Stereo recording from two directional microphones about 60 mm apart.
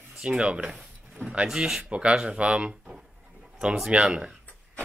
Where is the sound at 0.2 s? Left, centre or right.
Centre.